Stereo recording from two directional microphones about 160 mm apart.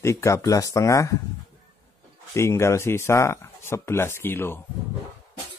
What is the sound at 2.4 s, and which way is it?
Speech, 15° left (ahead or behind).